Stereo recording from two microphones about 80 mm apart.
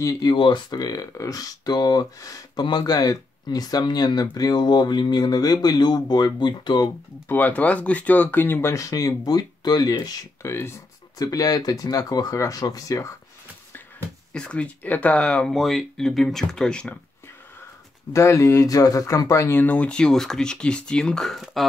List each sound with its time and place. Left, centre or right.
0.2 s speech: left
1.1 s speech: left
2.2 s speech: left
2.6 s speech: left
7.2 s speech: left
8.7 s speech: left
10.4 s speech: left
11.1 s speech: left
14.3 s speech: centre
15.5 s speech: centre
18.1 s speech: left
19.6 s speech: centre